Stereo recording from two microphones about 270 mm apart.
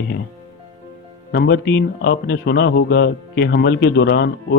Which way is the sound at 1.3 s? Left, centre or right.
Left.